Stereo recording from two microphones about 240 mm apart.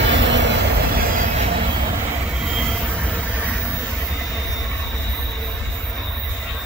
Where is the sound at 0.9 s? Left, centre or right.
Right.